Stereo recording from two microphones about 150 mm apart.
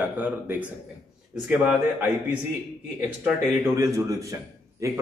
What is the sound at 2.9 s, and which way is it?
Speech, 15° right (ahead or behind).